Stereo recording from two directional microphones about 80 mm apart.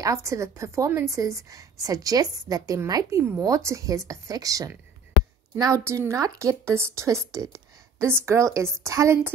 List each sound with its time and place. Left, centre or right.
0.0 s a woman's voice: right
3.3 s a woman's voice: right
5.9 s a woman's voice: right